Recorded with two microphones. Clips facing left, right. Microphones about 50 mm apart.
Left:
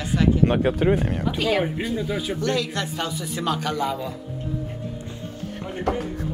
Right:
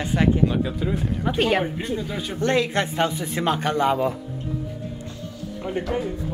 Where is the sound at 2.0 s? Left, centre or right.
Centre.